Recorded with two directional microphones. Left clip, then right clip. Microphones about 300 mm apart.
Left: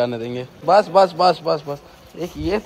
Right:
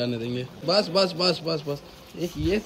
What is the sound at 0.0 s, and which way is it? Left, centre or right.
A man's voice, centre.